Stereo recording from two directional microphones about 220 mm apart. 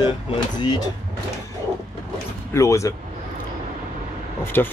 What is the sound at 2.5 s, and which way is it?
Speech, 15° left (ahead or behind).